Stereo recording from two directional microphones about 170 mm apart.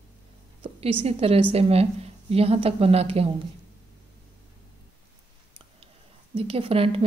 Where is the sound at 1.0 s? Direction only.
35° right (ahead or behind).